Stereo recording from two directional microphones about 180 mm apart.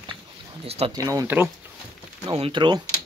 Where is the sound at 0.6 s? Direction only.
35° right (ahead or behind).